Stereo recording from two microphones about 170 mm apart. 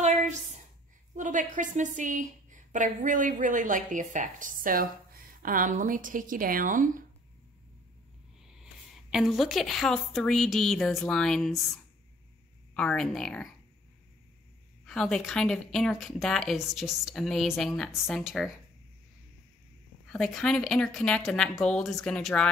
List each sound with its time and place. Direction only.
0.0 s a sound: 45° right (ahead or behind)
1.1 s a woman's voice: 50° right (ahead or behind)
9.1 s a woman's voice: centre (ahead or behind)
12.7 s a woman's voice: 5° left (ahead or behind)
14.9 s a woman's voice: centre (ahead or behind)
20.1 s a woman's voice: 5° left (ahead or behind)